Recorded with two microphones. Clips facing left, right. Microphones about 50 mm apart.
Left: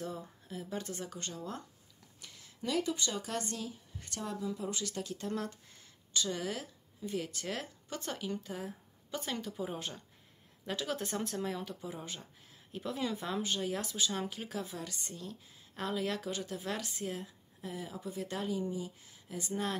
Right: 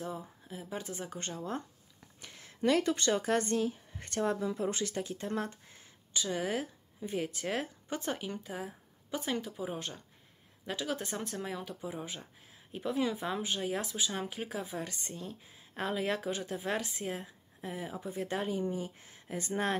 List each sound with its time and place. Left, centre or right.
0.0 s speech: centre
1.1 s speech: right
3.2 s speech: right